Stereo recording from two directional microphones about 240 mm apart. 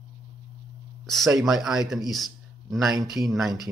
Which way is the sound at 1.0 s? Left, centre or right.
Centre.